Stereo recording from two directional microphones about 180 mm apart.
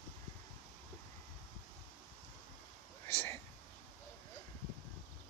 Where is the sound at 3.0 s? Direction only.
15° left (ahead or behind).